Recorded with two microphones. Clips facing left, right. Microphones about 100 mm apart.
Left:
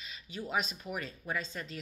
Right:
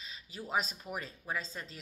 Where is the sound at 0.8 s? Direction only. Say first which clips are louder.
Left 2 dB; 25° right (ahead or behind).